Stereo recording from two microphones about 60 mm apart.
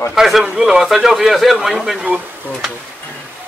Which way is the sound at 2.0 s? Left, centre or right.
Right.